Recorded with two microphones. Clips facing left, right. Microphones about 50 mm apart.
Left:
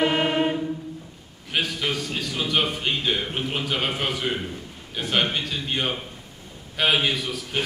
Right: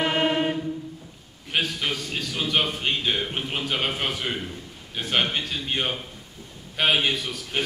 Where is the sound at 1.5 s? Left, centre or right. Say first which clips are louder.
Left 1 dB; centre.